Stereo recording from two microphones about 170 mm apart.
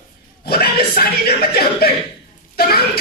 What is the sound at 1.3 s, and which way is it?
Chuckle, 65° left (ahead or behind).